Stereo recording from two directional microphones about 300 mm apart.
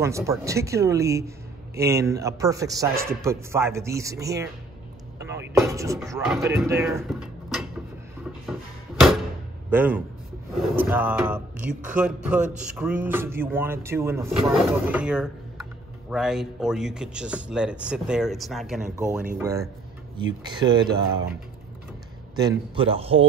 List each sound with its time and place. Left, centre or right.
0.0 s speech: centre
9.7 s a man's voice: centre
22.3 s speech: centre